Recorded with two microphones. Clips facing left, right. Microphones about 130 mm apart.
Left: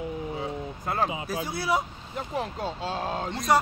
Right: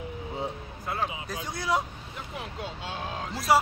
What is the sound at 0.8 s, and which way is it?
Speech, 45° left (ahead or behind).